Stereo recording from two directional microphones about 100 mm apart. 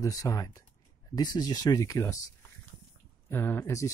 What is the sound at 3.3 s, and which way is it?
Speech, 20° left (ahead or behind).